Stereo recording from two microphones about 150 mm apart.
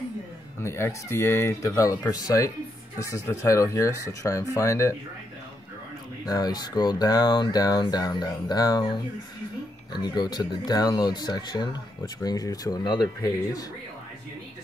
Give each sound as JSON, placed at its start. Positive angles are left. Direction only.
{"t": 0.6, "sound": "speech", "side_deg": 20}
{"t": 6.2, "sound": "speech", "side_deg": 25}
{"t": 9.9, "sound": "speech", "side_deg": 25}